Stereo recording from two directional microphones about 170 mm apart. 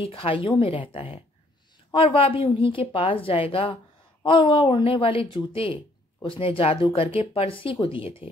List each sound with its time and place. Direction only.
0.0 s a woman's voice: 30° left (ahead or behind)